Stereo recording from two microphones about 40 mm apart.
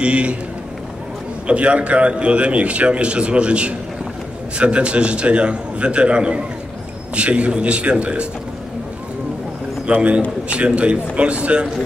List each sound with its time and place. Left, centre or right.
0.0 s a man's voice: right
1.5 s a man's voice: right
9.9 s a man's voice: right